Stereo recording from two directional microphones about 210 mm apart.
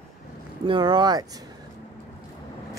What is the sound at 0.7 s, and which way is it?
Speech, 20° right (ahead or behind).